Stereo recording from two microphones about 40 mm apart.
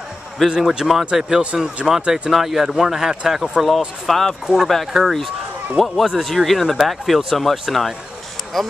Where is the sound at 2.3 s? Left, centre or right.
Centre.